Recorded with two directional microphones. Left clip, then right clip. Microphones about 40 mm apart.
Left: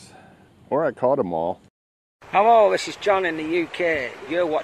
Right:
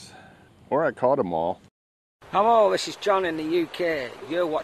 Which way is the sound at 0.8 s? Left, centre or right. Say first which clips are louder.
Left 2 dB; centre.